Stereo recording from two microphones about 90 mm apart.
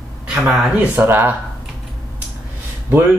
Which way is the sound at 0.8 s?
25° right (ahead or behind).